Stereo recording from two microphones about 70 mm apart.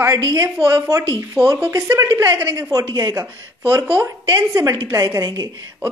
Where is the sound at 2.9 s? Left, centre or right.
Right.